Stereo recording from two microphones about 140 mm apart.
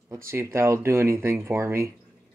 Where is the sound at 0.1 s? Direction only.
20° right (ahead or behind).